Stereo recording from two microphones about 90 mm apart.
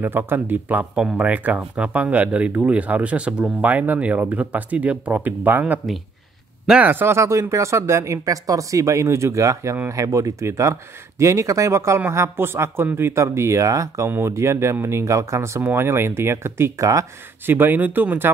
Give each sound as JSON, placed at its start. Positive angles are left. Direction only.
{"t": 0.0, "sound": "speech", "side_deg": -25}
{"t": 17.5, "sound": "speech", "side_deg": -20}